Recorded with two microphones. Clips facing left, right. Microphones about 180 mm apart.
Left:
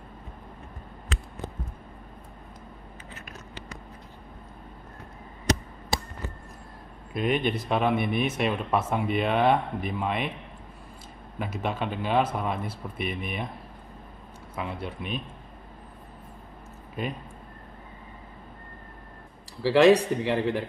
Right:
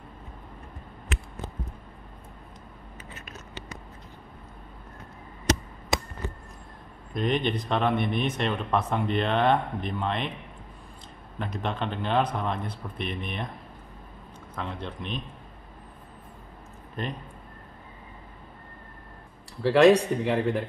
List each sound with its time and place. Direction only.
3.3 s scissors: 20° right (ahead or behind)
7.2 s speech: 5° left (ahead or behind)
11.3 s speech: 5° left (ahead or behind)
14.5 s speech: 10° left (ahead or behind)
17.0 s speech: 10° left (ahead or behind)
19.6 s speech: centre (ahead or behind)